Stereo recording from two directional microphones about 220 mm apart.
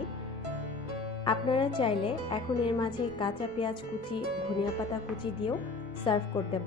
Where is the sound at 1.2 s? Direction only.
20° left (ahead or behind).